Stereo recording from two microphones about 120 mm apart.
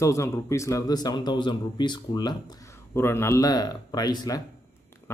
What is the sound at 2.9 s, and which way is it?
Speech, 20° left (ahead or behind).